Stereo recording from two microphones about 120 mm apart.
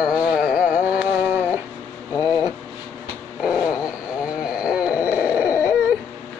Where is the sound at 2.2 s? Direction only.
35° left (ahead or behind).